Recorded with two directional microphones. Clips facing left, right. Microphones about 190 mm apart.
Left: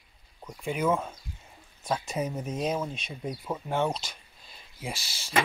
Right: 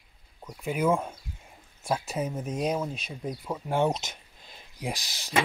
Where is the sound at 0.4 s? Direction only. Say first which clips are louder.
Right 1 dB; 5° right (ahead or behind).